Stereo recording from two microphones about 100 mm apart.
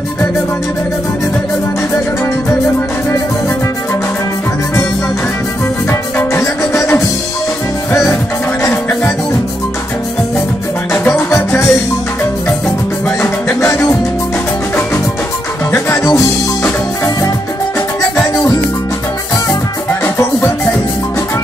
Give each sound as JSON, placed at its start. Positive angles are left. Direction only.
{"t": 5.9, "sound": "music", "side_deg": 25}
{"t": 10.9, "sound": "music", "side_deg": 20}
{"t": 13.2, "sound": "music", "side_deg": 25}
{"t": 15.7, "sound": "music", "side_deg": 25}
{"t": 18.3, "sound": "music", "side_deg": 40}